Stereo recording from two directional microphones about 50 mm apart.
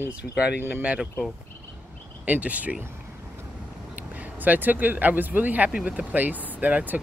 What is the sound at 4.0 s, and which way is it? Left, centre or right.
Speech, right.